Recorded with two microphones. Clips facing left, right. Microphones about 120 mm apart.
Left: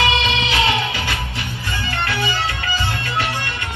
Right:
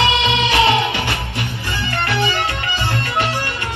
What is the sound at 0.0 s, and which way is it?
Music, 25° right (ahead or behind).